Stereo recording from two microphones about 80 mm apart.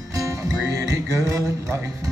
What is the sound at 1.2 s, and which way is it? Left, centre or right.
Speech, right.